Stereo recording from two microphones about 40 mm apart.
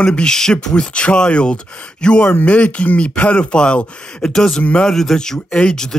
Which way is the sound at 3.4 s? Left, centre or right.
Left.